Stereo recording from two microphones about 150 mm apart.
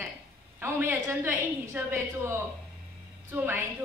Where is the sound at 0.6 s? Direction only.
15° right (ahead or behind).